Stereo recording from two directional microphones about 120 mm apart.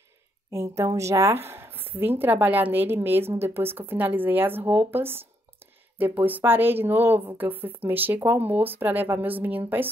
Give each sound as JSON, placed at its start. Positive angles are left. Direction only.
{"t": 0.5, "sound": "a woman's voice", "side_deg": -25}